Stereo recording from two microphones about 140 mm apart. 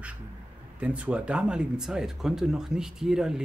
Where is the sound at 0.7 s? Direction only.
10° right (ahead or behind).